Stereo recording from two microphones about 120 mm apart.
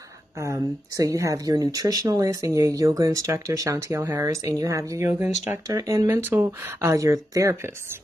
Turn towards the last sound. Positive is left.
turn(degrees=-25)  # may be behind; listen again after turning